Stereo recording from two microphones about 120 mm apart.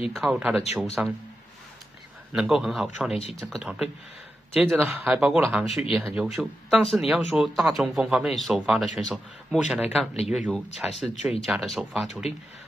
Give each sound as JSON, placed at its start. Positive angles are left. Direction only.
{"t": 0.1, "sound": "speech", "side_deg": -5}
{"t": 2.3, "sound": "speech", "side_deg": -5}
{"t": 4.6, "sound": "speech", "side_deg": -15}